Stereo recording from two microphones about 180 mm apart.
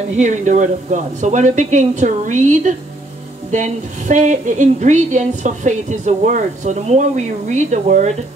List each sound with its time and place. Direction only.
0.1 s a woman's voice: 40° right (ahead or behind)